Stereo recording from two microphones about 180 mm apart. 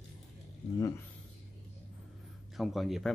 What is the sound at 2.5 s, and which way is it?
Speech, centre (ahead or behind).